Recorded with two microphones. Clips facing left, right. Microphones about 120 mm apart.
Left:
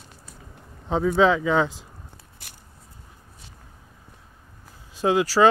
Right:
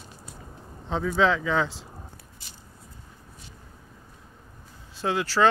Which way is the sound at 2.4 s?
60° left (ahead or behind).